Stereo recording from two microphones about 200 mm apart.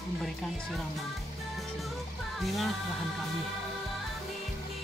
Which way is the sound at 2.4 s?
Centre (ahead or behind).